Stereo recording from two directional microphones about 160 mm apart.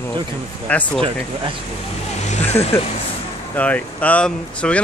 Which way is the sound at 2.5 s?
40° left (ahead or behind).